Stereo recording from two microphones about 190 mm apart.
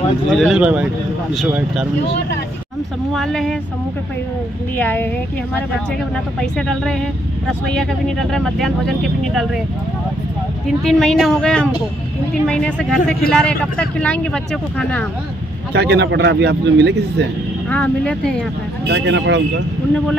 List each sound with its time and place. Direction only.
0.3 s speech: centre (ahead or behind)
3.1 s speech: centre (ahead or behind)
4.7 s speech: 10° left (ahead or behind)
6.4 s speech: centre (ahead or behind)
10.7 s speech: centre (ahead or behind)
15.7 s a man's voice: 60° right (ahead or behind)
17.6 s speech: 5° left (ahead or behind)
18.9 s speech: 65° right (ahead or behind)